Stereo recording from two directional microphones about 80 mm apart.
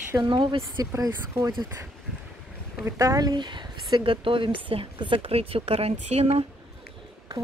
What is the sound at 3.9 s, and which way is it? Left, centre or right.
Speech, right.